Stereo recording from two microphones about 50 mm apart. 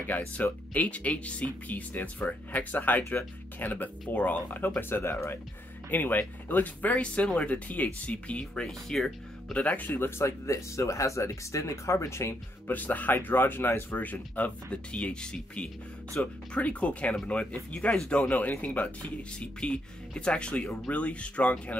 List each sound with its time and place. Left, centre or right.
0.0 s speech: left
5.9 s speech: left
8.6 s speech: centre
9.5 s speech: left
9.9 s speech: left
10.2 s speech: left
12.6 s speech: left
13.9 s speech: left